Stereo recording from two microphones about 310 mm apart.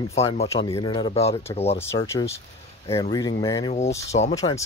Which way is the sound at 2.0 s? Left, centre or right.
Centre.